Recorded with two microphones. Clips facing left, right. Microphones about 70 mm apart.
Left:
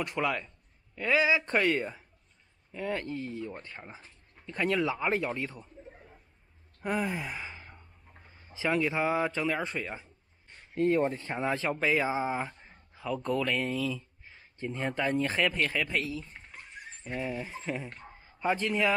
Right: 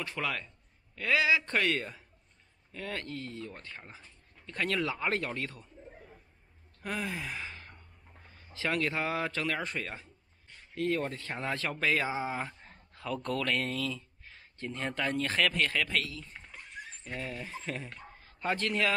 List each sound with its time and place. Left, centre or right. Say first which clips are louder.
0.0 s speech: left 5 dB; centre
6.9 s speech: left 5 dB; left
7.3 s sigh: even; centre
8.2 s a sound: even; centre
8.5 s speech: left 3 dB; centre
12.5 s a sound: even; centre
13.7 s speech: left 3 dB; centre
16.0 s speech: left 3 dB; left
16.3 s dog: right 1 dB; centre
18.2 s speech: left 3 dB; centre